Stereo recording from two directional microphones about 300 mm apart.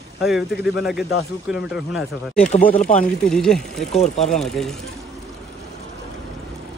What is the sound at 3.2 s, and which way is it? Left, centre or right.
Speech, centre.